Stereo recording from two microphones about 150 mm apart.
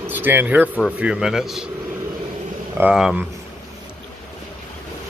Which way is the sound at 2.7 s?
5° right (ahead or behind).